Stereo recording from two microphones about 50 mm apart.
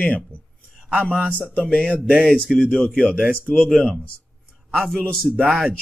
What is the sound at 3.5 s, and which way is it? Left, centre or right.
Speech, centre.